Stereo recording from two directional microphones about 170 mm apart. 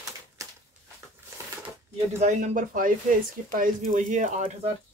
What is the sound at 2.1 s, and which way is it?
Speech, 50° right (ahead or behind).